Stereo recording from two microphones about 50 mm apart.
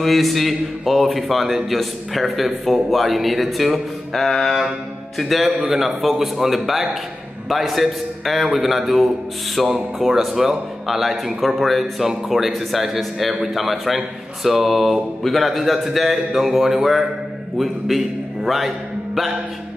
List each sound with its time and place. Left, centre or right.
0.0 s a man's voice: centre